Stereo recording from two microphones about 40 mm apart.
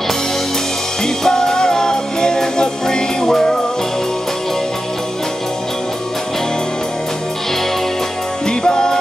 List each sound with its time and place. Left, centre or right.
1.0 s music: centre
8.5 s music: centre